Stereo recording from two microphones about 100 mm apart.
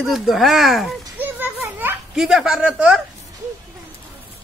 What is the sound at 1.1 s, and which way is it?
Children playing, 20° right (ahead or behind).